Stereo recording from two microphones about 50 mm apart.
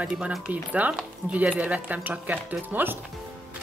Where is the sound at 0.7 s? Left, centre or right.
Right.